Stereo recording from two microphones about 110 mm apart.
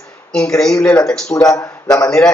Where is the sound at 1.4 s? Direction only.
30° left (ahead or behind).